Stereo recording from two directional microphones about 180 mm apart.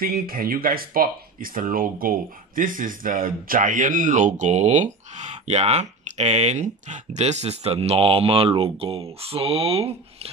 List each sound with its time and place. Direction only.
0.0 s speech: 55° right (ahead or behind); by 10.3 s 35° right (ahead or behind)